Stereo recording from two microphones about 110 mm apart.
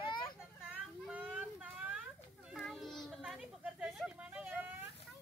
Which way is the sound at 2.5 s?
Centre (ahead or behind).